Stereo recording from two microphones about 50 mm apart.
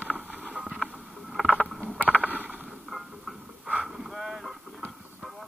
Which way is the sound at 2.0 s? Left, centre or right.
Left.